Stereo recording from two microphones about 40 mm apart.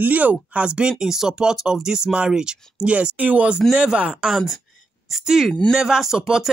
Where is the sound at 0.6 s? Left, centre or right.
Right.